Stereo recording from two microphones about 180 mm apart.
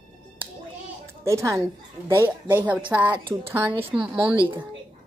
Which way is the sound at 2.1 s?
10° right (ahead or behind).